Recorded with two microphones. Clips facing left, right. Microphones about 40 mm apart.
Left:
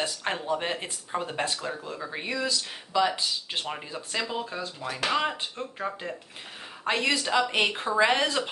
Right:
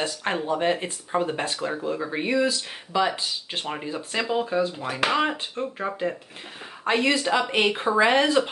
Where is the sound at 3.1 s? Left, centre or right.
Centre.